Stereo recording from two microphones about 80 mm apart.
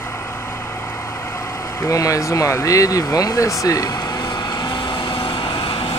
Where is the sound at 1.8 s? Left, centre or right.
Left.